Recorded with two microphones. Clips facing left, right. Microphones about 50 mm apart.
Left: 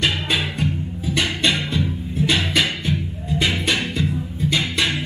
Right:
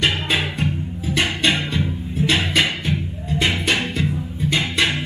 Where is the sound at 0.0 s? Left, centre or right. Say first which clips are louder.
Right 1 dB; right.